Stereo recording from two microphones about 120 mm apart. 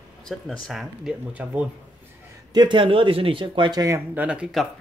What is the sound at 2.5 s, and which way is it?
Speech, 40° right (ahead or behind).